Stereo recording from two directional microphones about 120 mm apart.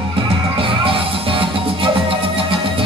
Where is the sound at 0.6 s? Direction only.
50° right (ahead or behind).